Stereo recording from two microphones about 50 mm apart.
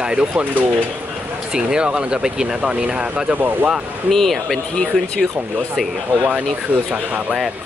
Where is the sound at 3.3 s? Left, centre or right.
Right.